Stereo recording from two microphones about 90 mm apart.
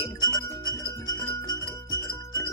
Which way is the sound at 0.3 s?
40° left (ahead or behind).